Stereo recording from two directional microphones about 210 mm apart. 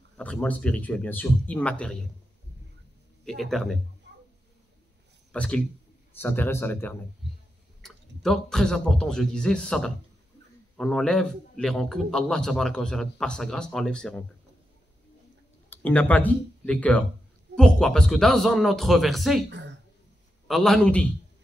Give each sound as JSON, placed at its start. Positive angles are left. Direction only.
{"t": 0.2, "sound": "a man's voice", "side_deg": 5}
{"t": 3.3, "sound": "a man's voice", "side_deg": 0}
{"t": 5.3, "sound": "a man's voice", "side_deg": 5}
{"t": 15.7, "sound": "a man's voice", "side_deg": 5}
{"t": 20.4, "sound": "a man's voice", "side_deg": 0}